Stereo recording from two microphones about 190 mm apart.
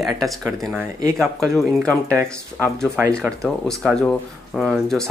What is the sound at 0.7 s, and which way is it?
Speech, 15° right (ahead or behind).